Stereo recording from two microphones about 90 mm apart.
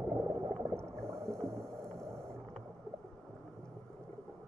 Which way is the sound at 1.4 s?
5° left (ahead or behind).